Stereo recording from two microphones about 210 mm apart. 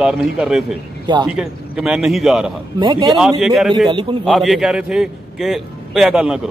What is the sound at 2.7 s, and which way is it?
Speech, 20° right (ahead or behind).